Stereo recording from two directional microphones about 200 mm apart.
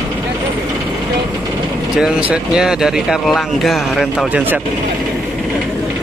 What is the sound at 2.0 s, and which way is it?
Speech, 5° right (ahead or behind).